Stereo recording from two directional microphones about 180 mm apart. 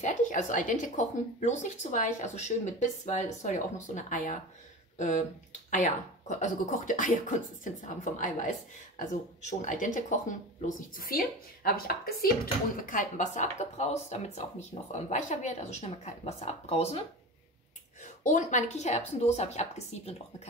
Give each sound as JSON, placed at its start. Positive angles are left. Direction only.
{"t": 0.0, "sound": "speech", "side_deg": 45}
{"t": 11.0, "sound": "a woman's voice", "side_deg": 55}
{"t": 12.8, "sound": "a woman's voice", "side_deg": 45}
{"t": 18.0, "sound": "a woman's voice", "side_deg": 45}